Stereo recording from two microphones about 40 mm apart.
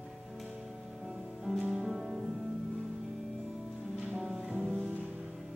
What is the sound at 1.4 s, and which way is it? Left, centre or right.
Music, centre.